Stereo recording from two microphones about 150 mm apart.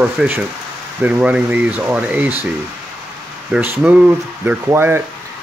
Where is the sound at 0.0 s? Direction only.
10° right (ahead or behind).